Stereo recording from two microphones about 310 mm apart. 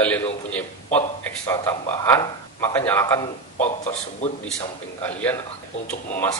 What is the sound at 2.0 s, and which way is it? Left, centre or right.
Speech, centre.